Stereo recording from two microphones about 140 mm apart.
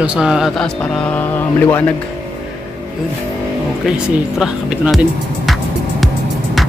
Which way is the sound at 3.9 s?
5° right (ahead or behind).